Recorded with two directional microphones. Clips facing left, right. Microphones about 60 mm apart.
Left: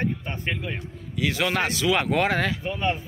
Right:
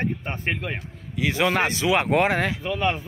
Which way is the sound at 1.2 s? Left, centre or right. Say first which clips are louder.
Right 3 dB; right.